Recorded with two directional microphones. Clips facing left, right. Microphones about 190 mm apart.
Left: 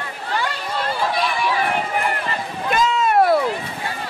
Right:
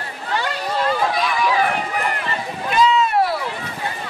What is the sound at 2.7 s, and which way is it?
Run, 50° left (ahead or behind).